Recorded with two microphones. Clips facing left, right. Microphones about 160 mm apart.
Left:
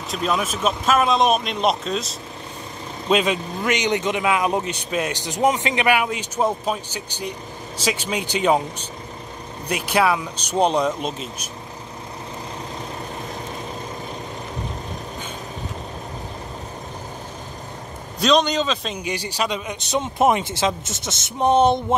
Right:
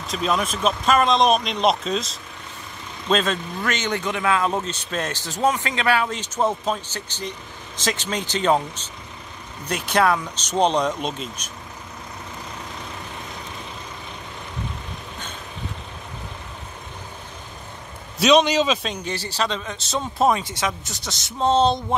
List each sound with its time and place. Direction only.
0.1 s speech: centre (ahead or behind)
3.1 s speech: 10° left (ahead or behind)
18.2 s speech: 5° right (ahead or behind)
18.9 s speech: 15° left (ahead or behind)